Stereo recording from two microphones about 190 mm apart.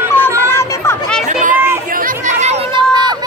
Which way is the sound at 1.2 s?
40° right (ahead or behind).